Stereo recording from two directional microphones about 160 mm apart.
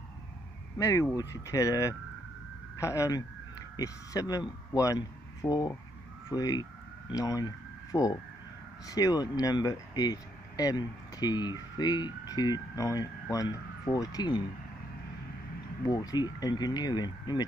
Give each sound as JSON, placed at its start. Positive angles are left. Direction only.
{"t": 0.7, "sound": "speech", "side_deg": 20}
{"t": 15.8, "sound": "speech", "side_deg": 20}